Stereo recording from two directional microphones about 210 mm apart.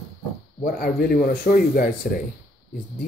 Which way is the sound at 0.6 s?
45° left (ahead or behind).